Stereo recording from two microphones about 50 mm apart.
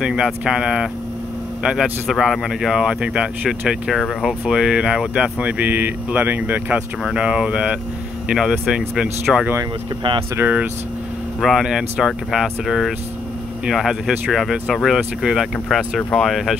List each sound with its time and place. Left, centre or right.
0.0 s a man's voice: centre
2.0 s speech: centre
2.8 s speech: centre
5.5 s speech: right
7.2 s speech: right
9.3 s speech: centre
10.4 s speech: right
11.4 s speech: centre